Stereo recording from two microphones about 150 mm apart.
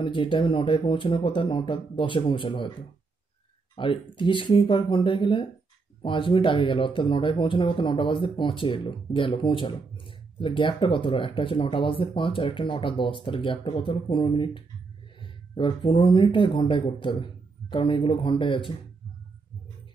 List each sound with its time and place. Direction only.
0.0 s speech: 35° left (ahead or behind)
3.7 s speech: 35° left (ahead or behind)